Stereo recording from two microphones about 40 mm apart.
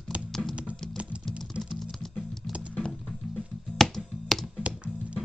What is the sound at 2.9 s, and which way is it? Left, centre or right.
Music, centre.